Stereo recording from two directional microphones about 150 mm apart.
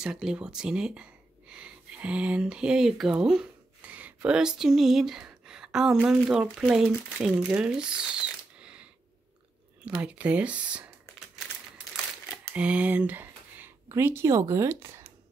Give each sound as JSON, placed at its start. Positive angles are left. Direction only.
{"t": 0.0, "sound": "speech", "side_deg": -5}
{"t": 9.8, "sound": "speech", "side_deg": -10}
{"t": 12.3, "sound": "speech", "side_deg": -10}